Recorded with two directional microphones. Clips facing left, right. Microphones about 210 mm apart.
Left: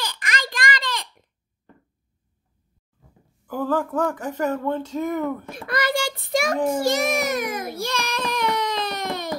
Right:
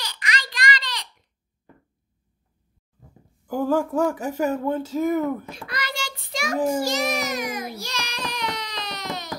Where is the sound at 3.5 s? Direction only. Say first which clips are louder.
Right 2 dB; 10° right (ahead or behind).